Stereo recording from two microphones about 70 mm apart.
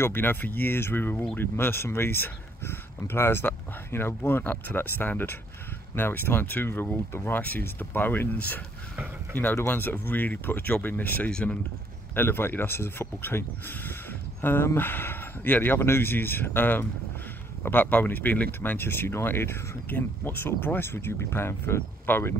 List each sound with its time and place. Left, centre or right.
0.0 s speech: left
12.2 s speech: left